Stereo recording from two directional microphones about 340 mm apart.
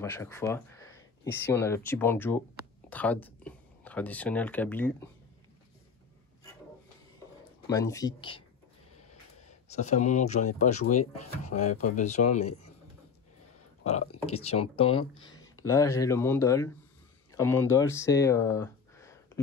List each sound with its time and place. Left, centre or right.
0.0 s speech: centre
7.7 s speech: centre
9.7 s speech: centre
14.2 s speech: centre
15.1 s a sound: centre
15.6 s speech: centre